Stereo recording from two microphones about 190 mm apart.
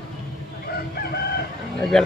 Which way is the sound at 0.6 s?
55° left (ahead or behind).